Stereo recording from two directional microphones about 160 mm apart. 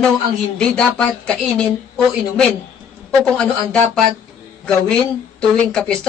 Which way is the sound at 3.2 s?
5° left (ahead or behind).